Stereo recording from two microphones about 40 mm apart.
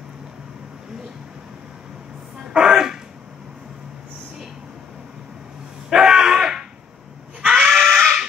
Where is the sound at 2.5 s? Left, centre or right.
Centre.